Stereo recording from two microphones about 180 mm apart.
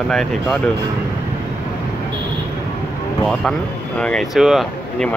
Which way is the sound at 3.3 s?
5° left (ahead or behind).